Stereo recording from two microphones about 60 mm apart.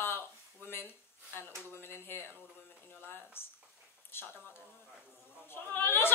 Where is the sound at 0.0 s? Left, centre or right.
Left.